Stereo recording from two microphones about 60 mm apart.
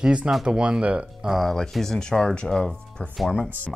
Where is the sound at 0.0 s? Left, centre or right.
Centre.